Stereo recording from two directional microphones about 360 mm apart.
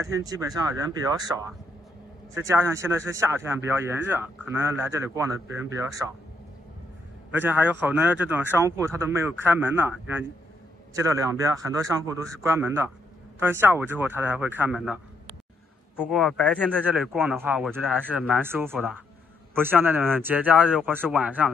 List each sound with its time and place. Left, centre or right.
0.0 s speech: centre
2.3 s speech: centre
7.3 s speech: centre
11.0 s speech: centre
16.0 s speech: centre